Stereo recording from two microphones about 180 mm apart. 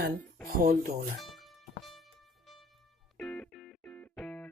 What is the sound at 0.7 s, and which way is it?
Speech, 55° right (ahead or behind).